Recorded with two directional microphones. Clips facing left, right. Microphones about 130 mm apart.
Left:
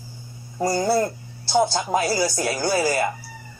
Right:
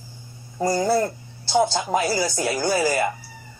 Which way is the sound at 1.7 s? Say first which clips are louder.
Even; 15° right (ahead or behind).